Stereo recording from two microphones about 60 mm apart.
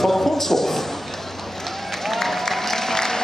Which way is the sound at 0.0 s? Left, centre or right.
Centre.